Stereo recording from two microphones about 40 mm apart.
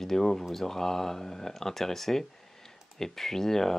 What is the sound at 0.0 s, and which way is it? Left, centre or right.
Speech, centre.